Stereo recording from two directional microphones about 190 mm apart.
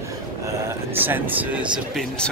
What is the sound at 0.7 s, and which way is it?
Speech, 10° right (ahead or behind).